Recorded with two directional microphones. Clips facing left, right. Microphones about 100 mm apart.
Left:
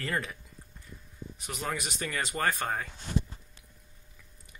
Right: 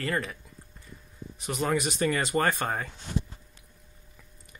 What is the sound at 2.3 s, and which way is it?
Speech, 35° right (ahead or behind).